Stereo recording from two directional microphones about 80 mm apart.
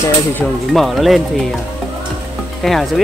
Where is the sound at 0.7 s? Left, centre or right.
Centre.